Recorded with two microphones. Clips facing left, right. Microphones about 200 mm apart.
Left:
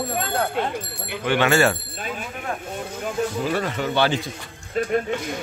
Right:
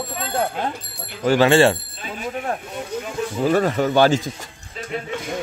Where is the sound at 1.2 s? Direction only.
35° right (ahead or behind).